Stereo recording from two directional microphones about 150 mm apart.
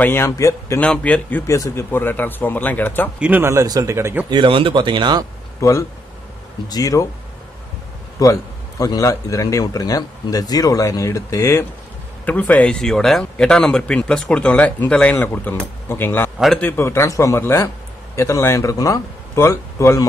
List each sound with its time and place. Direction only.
0.0 s speech: 15° left (ahead or behind)
0.7 s speech: 10° left (ahead or behind)
3.2 s speech: 10° right (ahead or behind)
4.3 s speech: 35° right (ahead or behind)
5.6 s a man's voice: 20° left (ahead or behind)
8.2 s a man's voice: 25° left (ahead or behind)